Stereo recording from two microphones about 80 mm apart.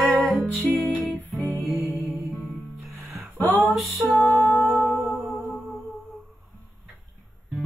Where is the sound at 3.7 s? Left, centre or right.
Centre.